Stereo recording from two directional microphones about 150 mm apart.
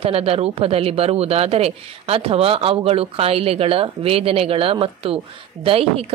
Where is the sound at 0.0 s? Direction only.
40° right (ahead or behind).